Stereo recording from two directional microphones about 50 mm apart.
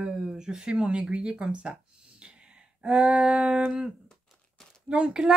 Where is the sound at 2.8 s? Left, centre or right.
Centre.